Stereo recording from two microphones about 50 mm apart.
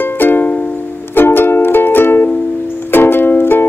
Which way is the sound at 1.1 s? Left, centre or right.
Left.